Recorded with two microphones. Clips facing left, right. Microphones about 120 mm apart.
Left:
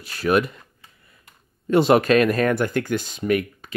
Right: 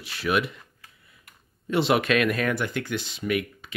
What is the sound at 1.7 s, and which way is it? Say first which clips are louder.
Speech: left 6 dB; 45° left (ahead or behind).